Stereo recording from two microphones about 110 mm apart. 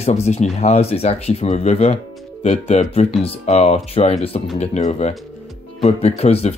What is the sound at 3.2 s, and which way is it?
Speech, 70° left (ahead or behind).